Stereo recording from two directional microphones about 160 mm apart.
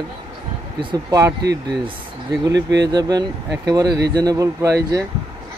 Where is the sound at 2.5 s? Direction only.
90° right.